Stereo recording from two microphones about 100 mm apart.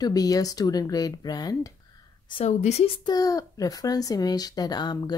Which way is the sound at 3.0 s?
40° left (ahead or behind).